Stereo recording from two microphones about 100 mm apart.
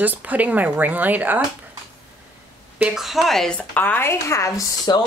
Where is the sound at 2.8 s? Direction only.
5° right (ahead or behind).